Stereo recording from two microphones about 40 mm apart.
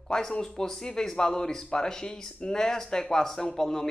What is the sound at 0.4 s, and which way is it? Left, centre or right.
Speech, centre.